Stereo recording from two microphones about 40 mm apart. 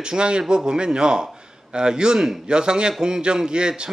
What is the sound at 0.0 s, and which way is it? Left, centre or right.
Speech, right.